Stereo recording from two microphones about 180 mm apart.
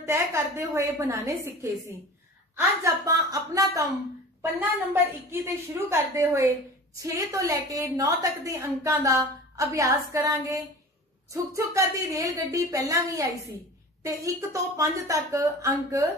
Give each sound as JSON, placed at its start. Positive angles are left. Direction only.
{"t": 0.0, "sound": "a woman's voice", "side_deg": -15}